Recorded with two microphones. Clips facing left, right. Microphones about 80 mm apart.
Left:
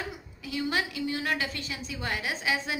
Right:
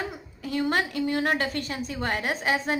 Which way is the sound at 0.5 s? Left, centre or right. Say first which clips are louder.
Right 4 dB; right.